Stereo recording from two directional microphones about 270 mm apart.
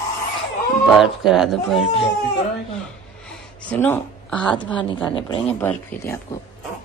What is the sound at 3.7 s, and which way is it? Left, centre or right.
A woman's voice, centre.